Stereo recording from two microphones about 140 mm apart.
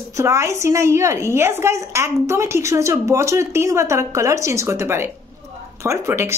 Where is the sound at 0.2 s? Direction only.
20° right (ahead or behind).